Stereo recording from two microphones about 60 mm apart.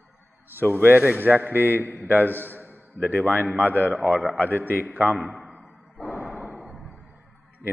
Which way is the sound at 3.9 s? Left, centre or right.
Right.